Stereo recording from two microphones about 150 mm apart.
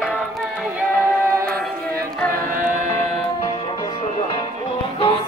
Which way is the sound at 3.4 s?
30° left (ahead or behind).